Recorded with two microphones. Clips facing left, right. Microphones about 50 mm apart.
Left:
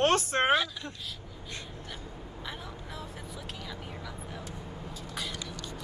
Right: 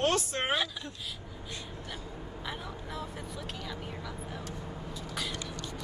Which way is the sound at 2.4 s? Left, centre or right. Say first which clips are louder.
Right 2 dB; centre.